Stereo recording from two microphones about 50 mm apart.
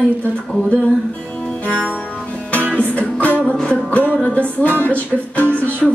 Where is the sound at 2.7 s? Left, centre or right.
Left.